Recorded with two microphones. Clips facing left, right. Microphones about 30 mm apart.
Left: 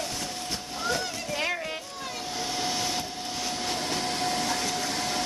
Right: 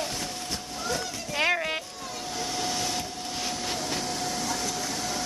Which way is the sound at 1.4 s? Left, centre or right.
Right.